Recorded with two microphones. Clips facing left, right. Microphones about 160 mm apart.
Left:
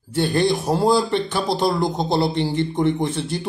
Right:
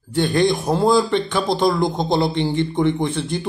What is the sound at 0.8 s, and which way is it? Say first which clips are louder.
Speech: right 2 dB; 35° left (ahead or behind).